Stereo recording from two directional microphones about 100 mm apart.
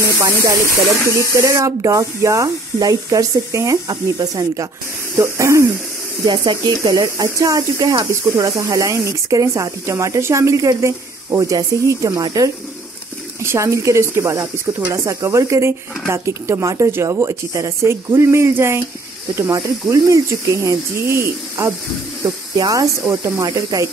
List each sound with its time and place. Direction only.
0.2 s speech: 30° right (ahead or behind)
5.1 s speech: 25° right (ahead or behind)
6.2 s speech: 40° right (ahead or behind)
12.1 s speech: 40° right (ahead or behind)
13.4 s speech: 30° right (ahead or behind)
22.6 s speech: 35° right (ahead or behind)
23.0 s speech: 25° right (ahead or behind)